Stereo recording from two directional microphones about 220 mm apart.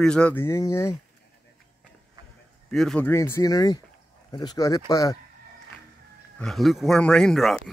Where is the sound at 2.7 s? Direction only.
5° left (ahead or behind).